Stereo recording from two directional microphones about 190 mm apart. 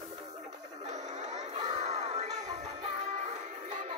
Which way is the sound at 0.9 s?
40° right (ahead or behind).